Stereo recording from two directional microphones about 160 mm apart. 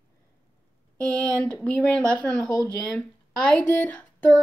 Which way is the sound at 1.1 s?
5° left (ahead or behind).